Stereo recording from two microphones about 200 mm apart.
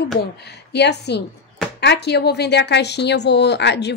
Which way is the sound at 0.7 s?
55° left (ahead or behind).